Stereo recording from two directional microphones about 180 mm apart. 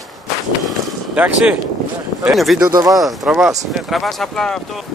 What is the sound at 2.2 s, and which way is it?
Speech, centre (ahead or behind).